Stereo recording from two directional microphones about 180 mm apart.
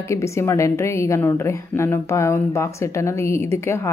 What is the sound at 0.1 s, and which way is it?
Speech, 15° left (ahead or behind).